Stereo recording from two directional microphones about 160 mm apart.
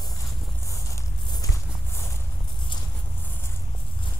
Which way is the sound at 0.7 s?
20° left (ahead or behind).